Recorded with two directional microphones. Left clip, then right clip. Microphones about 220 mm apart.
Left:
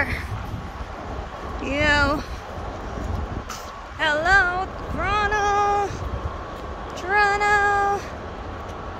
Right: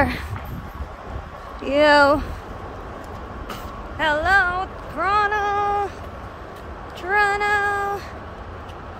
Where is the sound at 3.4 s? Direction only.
15° right (ahead or behind).